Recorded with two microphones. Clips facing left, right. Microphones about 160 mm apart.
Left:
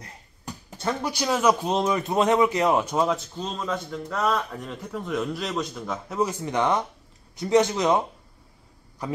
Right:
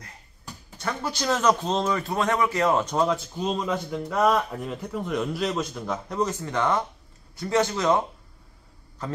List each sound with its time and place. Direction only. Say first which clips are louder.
1.0 s speech: even; 10° left (ahead or behind)
3.3 s a man's voice: right 3 dB; 10° right (ahead or behind); by 6.3 s 5° left (ahead or behind)
6.4 s a man's voice: left 1 dB; 15° left (ahead or behind)
9.0 s a man's voice: left 2 dB; 15° left (ahead or behind)